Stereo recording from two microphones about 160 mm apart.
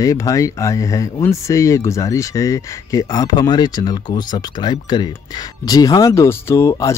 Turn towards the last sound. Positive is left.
turn(degrees=20)  # may be behind; listen again after turning